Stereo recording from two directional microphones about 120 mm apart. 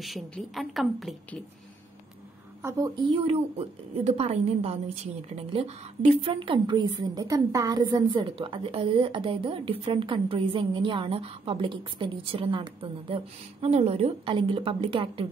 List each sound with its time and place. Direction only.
0.0 s a woman's voice: centre (ahead or behind)
3.0 s a woman's voice: 50° right (ahead or behind)
14.3 s a woman's voice: 45° right (ahead or behind)